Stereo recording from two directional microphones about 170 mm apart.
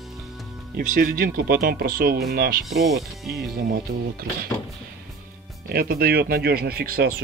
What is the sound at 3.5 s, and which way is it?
Speech, 65° right (ahead or behind).